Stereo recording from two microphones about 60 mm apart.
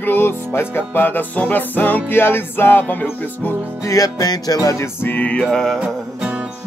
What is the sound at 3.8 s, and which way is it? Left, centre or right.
Music, left.